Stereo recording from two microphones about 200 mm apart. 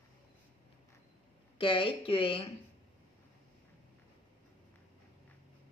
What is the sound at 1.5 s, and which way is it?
Speech, 25° left (ahead or behind).